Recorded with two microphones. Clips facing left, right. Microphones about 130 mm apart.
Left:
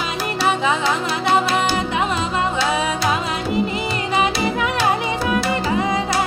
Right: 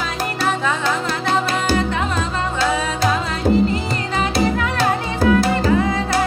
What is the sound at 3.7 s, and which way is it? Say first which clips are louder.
Music: right 1 dB; 10° left (ahead or behind).